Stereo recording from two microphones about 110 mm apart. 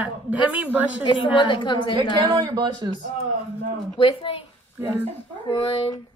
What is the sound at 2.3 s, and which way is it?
Speech, 35° right (ahead or behind).